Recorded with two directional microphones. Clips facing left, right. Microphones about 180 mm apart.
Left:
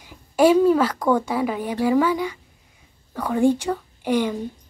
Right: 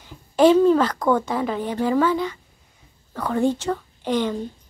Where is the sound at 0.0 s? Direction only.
10° left (ahead or behind).